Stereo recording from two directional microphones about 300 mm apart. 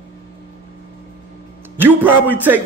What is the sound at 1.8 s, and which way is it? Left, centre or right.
Speech, centre.